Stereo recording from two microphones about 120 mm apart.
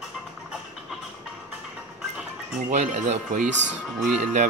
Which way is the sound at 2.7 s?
85° right.